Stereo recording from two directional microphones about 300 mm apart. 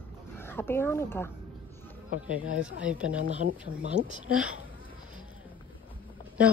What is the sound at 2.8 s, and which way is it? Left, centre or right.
Speech, centre.